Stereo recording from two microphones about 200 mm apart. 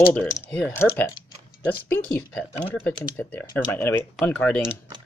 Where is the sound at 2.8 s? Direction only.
10° left (ahead or behind).